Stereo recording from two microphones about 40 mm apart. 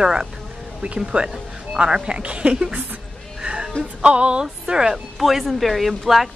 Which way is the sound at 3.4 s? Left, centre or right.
Centre.